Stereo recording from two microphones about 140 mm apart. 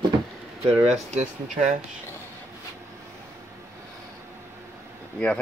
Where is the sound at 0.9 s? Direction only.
55° right (ahead or behind).